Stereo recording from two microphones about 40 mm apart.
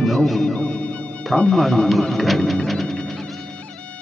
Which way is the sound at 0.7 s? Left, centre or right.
Left.